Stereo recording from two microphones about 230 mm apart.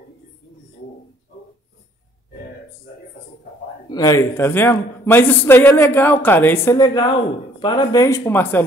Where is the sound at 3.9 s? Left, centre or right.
Centre.